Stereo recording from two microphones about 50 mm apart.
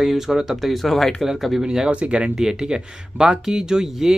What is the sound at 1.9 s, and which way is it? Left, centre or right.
Speech, right.